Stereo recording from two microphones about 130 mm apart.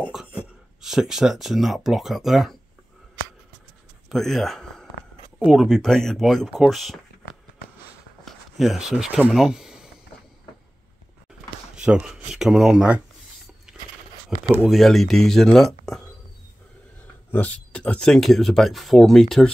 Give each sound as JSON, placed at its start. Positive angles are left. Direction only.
{"t": 0.1, "sound": "speech", "side_deg": -10}
{"t": 4.1, "sound": "speech", "side_deg": 5}
{"t": 6.5, "sound": "speech", "side_deg": -10}
{"t": 8.3, "sound": "speech", "side_deg": 0}
{"t": 11.7, "sound": "speech", "side_deg": -5}
{"t": 13.7, "sound": "biting", "side_deg": -5}
{"t": 14.7, "sound": "speech", "side_deg": 0}
{"t": 17.3, "sound": "speech", "side_deg": 10}